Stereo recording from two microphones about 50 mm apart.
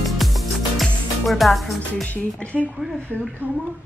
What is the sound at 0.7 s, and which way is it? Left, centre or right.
Speech, centre.